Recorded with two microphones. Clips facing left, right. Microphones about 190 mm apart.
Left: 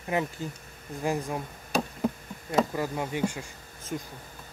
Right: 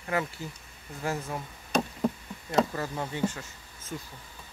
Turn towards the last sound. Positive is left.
turn(degrees=10)  # may be behind; listen again after turning